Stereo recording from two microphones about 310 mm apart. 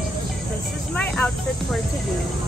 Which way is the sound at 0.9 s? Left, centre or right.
Centre.